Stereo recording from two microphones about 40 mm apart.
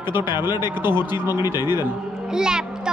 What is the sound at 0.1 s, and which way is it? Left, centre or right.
Speech, right.